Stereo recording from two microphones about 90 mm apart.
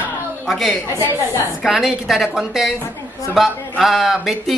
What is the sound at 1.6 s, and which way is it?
Speech, 5° right (ahead or behind).